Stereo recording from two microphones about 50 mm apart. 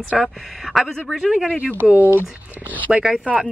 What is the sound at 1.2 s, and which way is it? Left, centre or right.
Speech, centre.